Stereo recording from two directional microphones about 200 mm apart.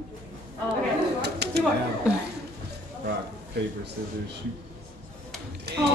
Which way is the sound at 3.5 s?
55° right (ahead or behind).